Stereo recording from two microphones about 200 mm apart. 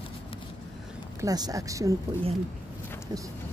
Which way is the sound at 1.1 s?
20° right (ahead or behind).